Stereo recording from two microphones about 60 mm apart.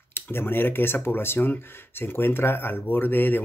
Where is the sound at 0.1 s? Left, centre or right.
Left.